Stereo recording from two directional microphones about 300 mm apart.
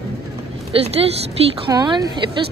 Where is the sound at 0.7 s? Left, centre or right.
Centre.